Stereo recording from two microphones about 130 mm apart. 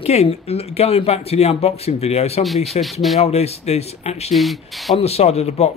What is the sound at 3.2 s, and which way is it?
Speech, 55° left (ahead or behind).